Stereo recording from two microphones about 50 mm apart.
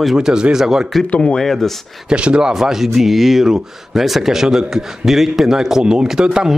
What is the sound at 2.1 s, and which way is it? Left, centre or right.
Speech, right.